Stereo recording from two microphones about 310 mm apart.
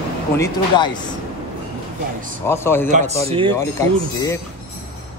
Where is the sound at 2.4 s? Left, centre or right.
Centre.